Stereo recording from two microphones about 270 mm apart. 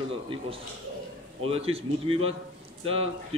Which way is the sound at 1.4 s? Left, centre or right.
Right.